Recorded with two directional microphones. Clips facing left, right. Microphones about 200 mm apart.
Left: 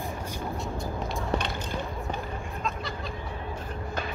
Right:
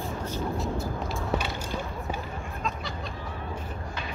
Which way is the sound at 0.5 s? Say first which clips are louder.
Right 2 dB; centre (ahead or behind).